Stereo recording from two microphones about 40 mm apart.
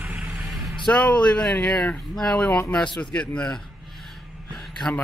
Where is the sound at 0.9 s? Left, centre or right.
Left.